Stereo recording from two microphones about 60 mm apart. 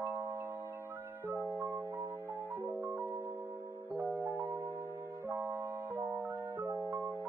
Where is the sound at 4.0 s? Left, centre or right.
Right.